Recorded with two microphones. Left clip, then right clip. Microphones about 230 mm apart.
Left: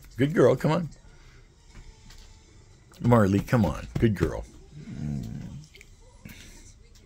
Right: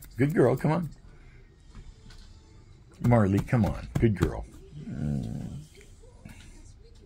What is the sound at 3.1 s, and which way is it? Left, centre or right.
Speech, left.